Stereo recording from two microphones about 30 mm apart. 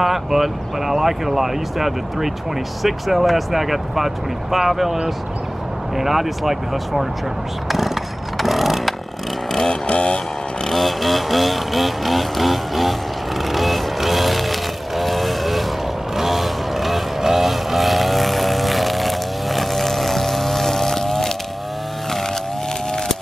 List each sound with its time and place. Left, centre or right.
0.0 s speech: centre
5.9 s speech: centre
7.6 s vehicle: centre
9.8 s vehicle: left
10.7 s vehicle: centre